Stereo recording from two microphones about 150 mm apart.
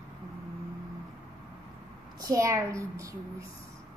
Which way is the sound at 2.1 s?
25° right (ahead or behind).